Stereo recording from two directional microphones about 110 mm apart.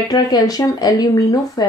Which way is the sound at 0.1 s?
35° left (ahead or behind).